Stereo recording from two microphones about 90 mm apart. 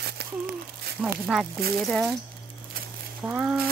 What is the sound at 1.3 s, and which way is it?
Speech, 5° left (ahead or behind).